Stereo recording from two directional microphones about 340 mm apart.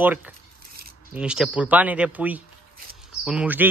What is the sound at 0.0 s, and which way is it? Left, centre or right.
Speech, centre.